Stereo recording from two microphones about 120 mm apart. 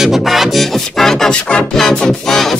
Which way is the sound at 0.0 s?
Centre (ahead or behind).